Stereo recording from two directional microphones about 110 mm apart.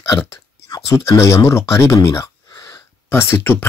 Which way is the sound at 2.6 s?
25° left (ahead or behind).